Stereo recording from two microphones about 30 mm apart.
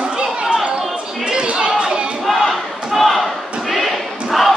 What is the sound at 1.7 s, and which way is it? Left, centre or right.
Crowd, right.